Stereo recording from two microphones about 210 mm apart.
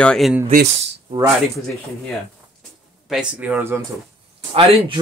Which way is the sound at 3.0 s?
5° right (ahead or behind).